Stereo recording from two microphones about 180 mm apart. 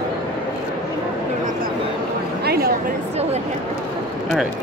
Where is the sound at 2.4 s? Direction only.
60° right (ahead or behind).